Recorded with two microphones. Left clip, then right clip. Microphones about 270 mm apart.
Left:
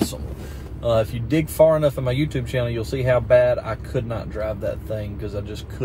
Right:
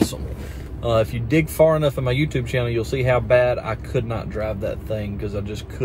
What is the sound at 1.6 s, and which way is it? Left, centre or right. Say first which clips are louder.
Speech: left 2 dB; centre.